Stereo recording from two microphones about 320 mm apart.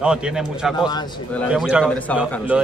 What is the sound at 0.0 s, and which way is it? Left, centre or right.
Speech, centre.